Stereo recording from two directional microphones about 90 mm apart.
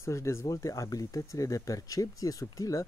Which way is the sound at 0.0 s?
30° left (ahead or behind).